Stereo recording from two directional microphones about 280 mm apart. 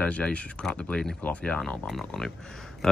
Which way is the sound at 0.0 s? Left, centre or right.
Centre.